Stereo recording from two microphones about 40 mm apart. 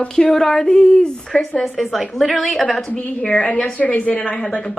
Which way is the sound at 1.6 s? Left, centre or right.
Centre.